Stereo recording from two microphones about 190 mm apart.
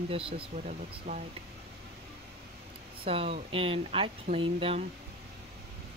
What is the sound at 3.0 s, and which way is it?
Speech, 30° right (ahead or behind).